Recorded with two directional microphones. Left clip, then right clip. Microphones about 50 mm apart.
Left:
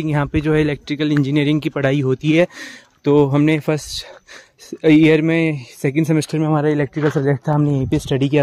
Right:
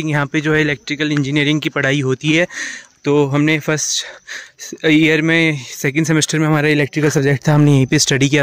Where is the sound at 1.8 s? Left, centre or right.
Centre.